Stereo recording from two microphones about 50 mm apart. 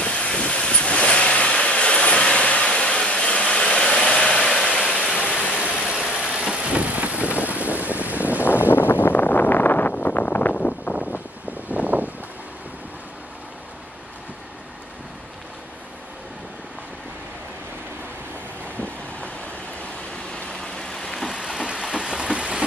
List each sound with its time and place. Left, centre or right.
0.0 s vehicle: centre
6.2 s vehicle: centre; by 8.5 s right
8.5 s wind noise: left
9.9 s a sound: left
11.7 s vehicle: right
20.3 s vehicle: centre
21.3 s vehicle: centre